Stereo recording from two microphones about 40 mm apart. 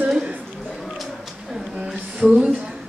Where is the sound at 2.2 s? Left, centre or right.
Right.